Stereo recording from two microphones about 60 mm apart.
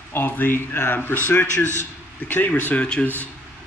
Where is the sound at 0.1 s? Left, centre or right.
Left.